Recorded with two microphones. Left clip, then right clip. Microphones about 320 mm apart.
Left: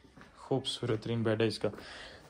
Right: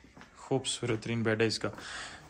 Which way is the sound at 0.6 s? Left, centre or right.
Centre.